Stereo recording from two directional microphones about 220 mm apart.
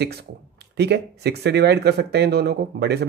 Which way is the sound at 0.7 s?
50° right (ahead or behind).